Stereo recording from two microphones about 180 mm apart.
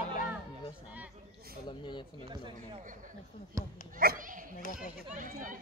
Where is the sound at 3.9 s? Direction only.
50° right (ahead or behind).